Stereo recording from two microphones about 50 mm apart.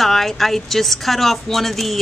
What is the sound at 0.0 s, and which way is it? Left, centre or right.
Speech, centre.